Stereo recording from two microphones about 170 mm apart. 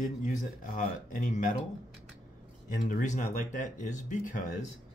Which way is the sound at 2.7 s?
50° left (ahead or behind).